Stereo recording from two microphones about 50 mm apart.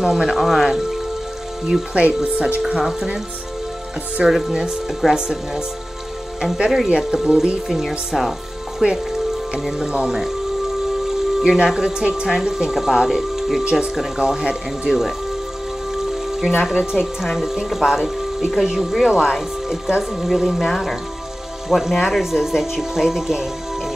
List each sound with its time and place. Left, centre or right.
0.0 s speech: centre
2.0 s speech: right
2.6 s speech: centre
4.2 s speech: centre
8.1 s music: centre
8.8 s speech: centre
15.9 s music: centre
16.9 s speech: centre